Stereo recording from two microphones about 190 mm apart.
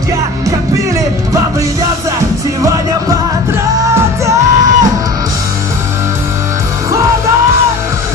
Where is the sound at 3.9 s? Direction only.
15° right (ahead or behind).